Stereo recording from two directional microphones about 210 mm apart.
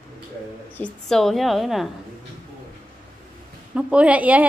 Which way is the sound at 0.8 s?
Centre (ahead or behind).